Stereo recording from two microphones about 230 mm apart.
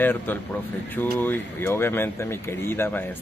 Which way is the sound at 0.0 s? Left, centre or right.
Centre.